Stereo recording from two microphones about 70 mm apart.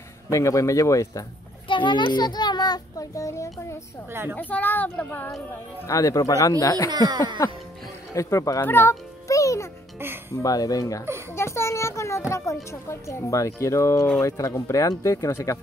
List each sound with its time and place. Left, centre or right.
0.3 s a child's voice: left
2.0 s a child's voice: left
4.1 s a child's voice: right
4.4 s a child's voice: left
5.9 s a child's voice: left
6.9 s speech: right
8.1 s a child's voice: left
8.5 s speech: left
9.3 s music: left
10.3 s speech: left
11.3 s a child's voice: left